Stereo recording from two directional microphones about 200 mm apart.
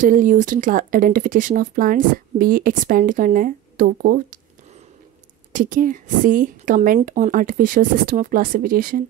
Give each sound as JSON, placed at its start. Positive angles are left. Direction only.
{"t": 0.0, "sound": "speech", "side_deg": -40}
{"t": 5.5, "sound": "speech", "side_deg": -40}